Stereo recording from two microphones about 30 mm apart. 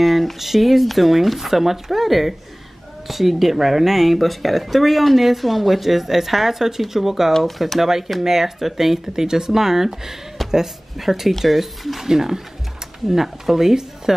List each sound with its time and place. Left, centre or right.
0.0 s speech: centre
8.2 s speech: centre